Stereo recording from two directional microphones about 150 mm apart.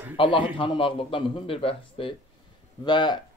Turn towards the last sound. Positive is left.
turn(degrees=30)  # may be behind; listen again after turning